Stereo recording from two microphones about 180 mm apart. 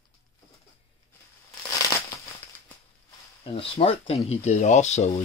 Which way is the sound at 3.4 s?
30° left (ahead or behind).